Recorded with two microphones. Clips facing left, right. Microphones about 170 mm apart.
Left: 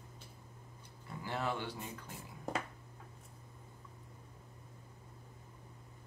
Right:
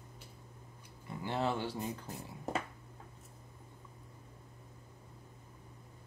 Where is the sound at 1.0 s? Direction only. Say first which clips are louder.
Right 4 dB; 25° right (ahead or behind).